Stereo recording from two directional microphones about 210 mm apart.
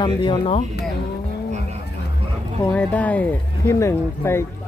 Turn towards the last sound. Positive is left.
turn(degrees=15)  # may be behind; listen again after turning